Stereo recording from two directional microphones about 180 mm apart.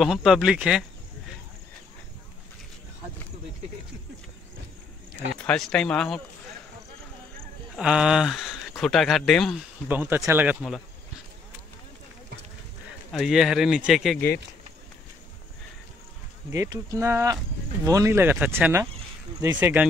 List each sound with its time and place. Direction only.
0.0 s speech: centre (ahead or behind)
5.3 s speech: 5° left (ahead or behind)
7.7 s speech: 5° right (ahead or behind)
9.8 s speech: 10° right (ahead or behind)
13.2 s speech: centre (ahead or behind)
16.5 s speech: 20° right (ahead or behind)